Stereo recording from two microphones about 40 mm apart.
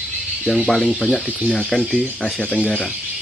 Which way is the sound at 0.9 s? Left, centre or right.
Centre.